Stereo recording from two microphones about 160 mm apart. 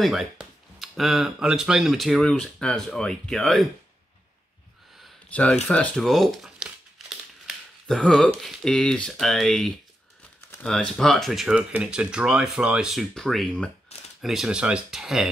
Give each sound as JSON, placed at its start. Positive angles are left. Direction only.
{"t": 0.0, "sound": "speech", "side_deg": 0}
{"t": 5.3, "sound": "speech", "side_deg": 10}
{"t": 13.9, "sound": "a sound", "side_deg": 40}
{"t": 14.2, "sound": "speech", "side_deg": 0}